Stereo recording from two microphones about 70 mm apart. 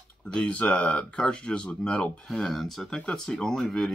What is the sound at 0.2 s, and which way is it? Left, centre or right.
Speech, centre.